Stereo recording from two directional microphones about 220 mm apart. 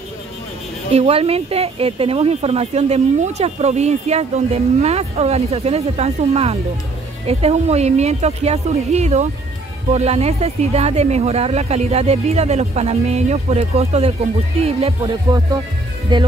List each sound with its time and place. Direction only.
0.9 s speech: 25° right (ahead or behind)